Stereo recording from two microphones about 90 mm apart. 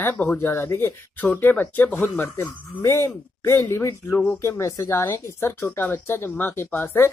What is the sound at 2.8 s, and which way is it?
Speech, 35° left (ahead or behind).